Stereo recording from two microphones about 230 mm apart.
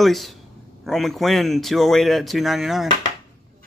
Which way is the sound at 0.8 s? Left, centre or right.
Centre.